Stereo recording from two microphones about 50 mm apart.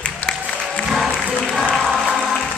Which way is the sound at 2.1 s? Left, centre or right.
Centre.